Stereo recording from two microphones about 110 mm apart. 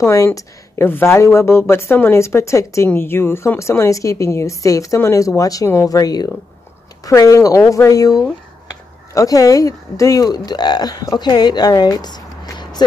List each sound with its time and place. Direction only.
0.0 s a woman's voice: 25° left (ahead or behind)